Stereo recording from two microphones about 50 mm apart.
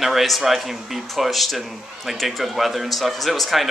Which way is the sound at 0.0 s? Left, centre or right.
Centre.